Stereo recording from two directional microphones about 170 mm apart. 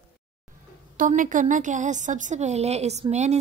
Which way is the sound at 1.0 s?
50° right (ahead or behind).